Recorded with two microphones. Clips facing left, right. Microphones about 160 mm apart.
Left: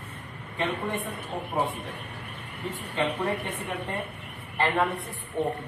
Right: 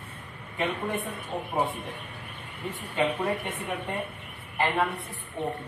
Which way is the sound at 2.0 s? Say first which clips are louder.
Left 2 dB; 75° left (ahead or behind).